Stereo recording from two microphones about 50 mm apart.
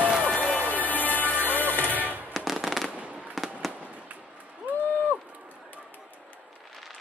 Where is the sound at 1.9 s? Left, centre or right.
Right.